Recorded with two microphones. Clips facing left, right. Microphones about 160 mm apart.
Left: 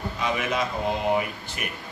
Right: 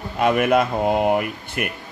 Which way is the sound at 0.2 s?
55° right (ahead or behind).